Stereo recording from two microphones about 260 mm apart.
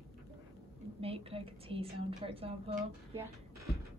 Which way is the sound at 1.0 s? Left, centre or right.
Right.